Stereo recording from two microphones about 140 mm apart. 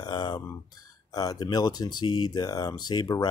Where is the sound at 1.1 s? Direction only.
30° left (ahead or behind).